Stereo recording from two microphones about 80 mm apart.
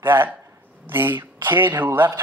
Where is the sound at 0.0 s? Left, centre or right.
Right.